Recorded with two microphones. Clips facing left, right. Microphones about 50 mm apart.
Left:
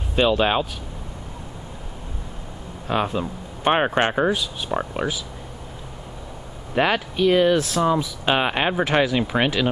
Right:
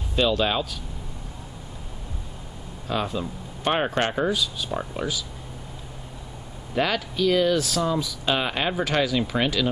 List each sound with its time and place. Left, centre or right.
0.1 s speech: left
2.9 s speech: left
6.7 s speech: left